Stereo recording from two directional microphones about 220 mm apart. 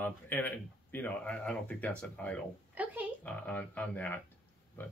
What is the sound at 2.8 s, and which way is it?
Speech, 5° right (ahead or behind).